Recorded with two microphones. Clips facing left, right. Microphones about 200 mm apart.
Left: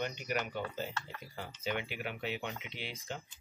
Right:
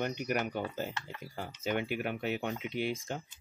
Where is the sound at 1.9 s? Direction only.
45° right (ahead or behind).